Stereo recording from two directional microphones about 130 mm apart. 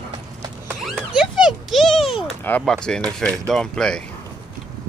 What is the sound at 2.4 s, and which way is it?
Speech, 15° left (ahead or behind).